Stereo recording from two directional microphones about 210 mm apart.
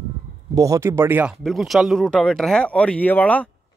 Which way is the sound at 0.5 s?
15° right (ahead or behind).